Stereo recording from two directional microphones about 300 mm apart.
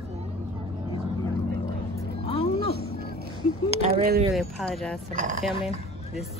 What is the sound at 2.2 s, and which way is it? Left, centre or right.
Music, centre.